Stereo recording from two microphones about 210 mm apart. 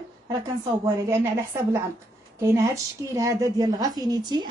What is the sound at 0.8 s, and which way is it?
A woman's voice, 15° right (ahead or behind).